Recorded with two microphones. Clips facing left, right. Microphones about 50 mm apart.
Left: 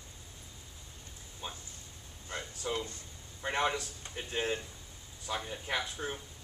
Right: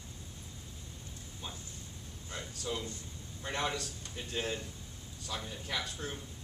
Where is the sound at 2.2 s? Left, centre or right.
Left.